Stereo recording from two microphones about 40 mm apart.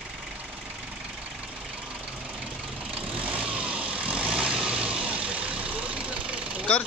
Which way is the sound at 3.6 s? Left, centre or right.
Right.